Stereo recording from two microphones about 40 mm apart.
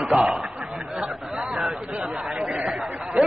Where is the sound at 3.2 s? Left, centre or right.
Right.